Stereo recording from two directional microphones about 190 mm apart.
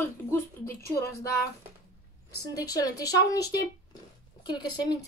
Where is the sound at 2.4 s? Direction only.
20° left (ahead or behind).